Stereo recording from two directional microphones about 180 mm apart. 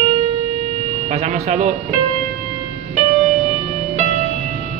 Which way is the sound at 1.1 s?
40° right (ahead or behind).